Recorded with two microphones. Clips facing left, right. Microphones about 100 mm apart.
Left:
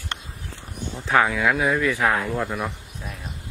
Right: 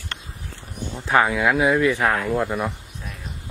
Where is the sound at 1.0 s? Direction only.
10° right (ahead or behind).